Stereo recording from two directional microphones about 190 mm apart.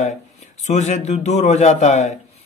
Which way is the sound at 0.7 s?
40° left (ahead or behind).